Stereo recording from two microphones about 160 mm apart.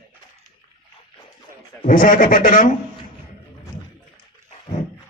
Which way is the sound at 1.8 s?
55° left (ahead or behind).